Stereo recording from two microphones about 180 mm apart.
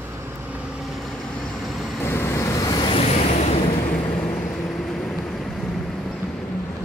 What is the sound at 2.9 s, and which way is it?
Vehicle, 35° left (ahead or behind).